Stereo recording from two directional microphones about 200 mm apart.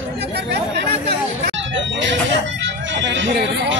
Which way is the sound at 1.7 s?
65° right (ahead or behind).